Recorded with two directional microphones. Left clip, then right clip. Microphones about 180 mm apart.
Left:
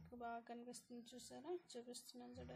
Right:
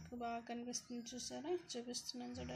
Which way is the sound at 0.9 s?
5° left (ahead or behind).